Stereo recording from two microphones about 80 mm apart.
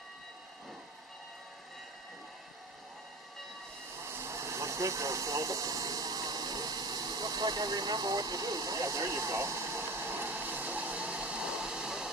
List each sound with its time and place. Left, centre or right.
4.0 s vehicle: right; by 12.1 s centre